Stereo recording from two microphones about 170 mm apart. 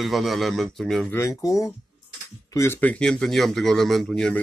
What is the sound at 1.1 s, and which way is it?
Speech, 15° left (ahead or behind).